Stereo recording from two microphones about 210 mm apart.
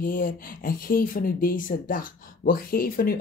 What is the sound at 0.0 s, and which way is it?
Speech, 40° left (ahead or behind).